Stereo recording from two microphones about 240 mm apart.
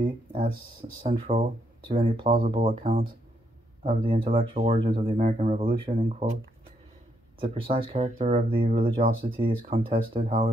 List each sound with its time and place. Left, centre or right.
0.0 s speech: right
7.4 s speech: right